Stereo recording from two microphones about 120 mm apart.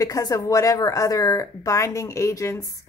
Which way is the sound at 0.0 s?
30° left (ahead or behind).